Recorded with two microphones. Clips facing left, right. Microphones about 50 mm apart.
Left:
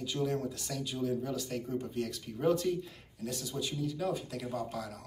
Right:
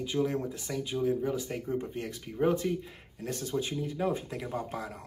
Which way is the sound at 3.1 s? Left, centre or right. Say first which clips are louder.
Right 5 dB; right.